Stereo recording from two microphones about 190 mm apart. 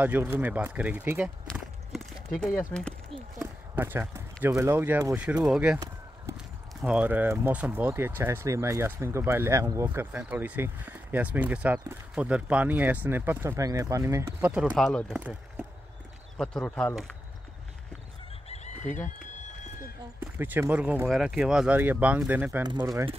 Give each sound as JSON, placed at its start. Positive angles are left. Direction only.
{"t": 0.0, "sound": "speech", "side_deg": -10}
{"t": 2.3, "sound": "speech", "side_deg": 5}
{"t": 3.3, "sound": "speech", "side_deg": -10}
{"t": 6.3, "sound": "walk", "side_deg": -15}
{"t": 6.8, "sound": "speech", "side_deg": -5}
{"t": 14.9, "sound": "speech", "side_deg": 5}
{"t": 15.1, "sound": "speech", "side_deg": -10}
{"t": 16.3, "sound": "speech", "side_deg": 5}
{"t": 18.5, "sound": "chicken", "side_deg": 35}
{"t": 19.8, "sound": "speech", "side_deg": -10}
{"t": 22.6, "sound": "speech", "side_deg": -25}